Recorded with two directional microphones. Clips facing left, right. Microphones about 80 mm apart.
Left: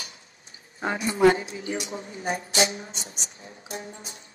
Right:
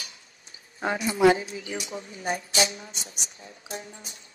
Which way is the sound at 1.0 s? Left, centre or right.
Left.